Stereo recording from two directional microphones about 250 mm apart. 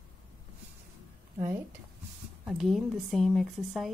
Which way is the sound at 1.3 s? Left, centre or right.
Centre.